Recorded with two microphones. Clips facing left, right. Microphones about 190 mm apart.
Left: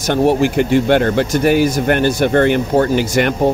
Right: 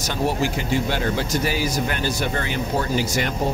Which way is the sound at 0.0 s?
60° left (ahead or behind).